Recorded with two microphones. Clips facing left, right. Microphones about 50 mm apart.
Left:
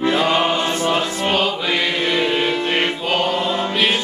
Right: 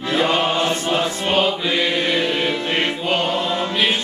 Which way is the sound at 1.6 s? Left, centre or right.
Left.